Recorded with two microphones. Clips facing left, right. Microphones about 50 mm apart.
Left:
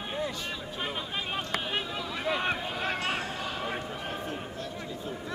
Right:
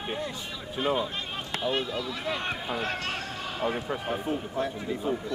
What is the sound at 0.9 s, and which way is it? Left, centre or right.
Run, centre.